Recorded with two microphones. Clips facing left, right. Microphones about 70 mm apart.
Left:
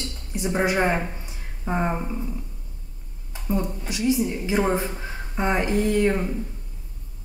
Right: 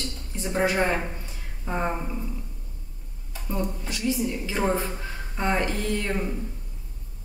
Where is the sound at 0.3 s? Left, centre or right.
Centre.